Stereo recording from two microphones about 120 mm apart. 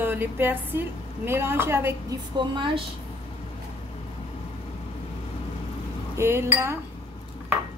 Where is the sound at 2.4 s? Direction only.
40° right (ahead or behind).